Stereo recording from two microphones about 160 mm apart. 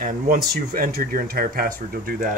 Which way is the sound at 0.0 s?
65° right (ahead or behind).